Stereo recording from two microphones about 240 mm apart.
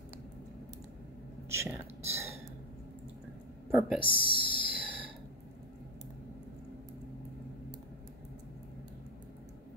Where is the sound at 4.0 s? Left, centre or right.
Left.